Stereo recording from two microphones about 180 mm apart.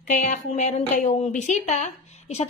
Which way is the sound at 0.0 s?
45° left (ahead or behind).